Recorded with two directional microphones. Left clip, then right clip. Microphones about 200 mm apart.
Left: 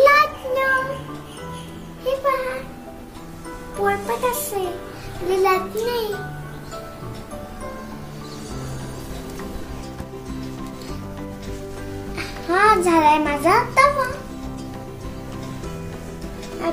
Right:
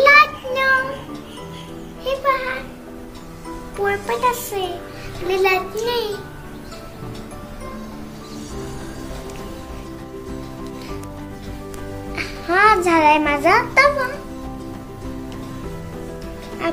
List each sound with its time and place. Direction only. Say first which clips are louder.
0.0 s child singing: right 3 dB; centre (ahead or behind)
2.0 s a sound: right 1 dB; centre (ahead or behind)
3.8 s a child's voice: right 2 dB; centre (ahead or behind)
12.2 s music: right 2 dB; centre (ahead or behind)